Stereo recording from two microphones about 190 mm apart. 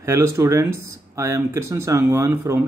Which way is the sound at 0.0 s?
15° right (ahead or behind).